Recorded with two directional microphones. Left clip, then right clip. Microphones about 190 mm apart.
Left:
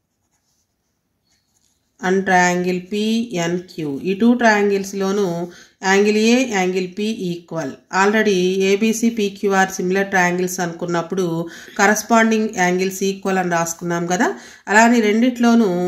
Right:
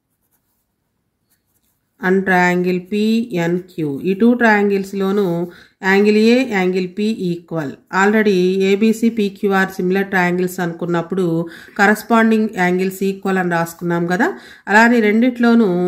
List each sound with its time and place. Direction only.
2.0 s speech: 45° right (ahead or behind)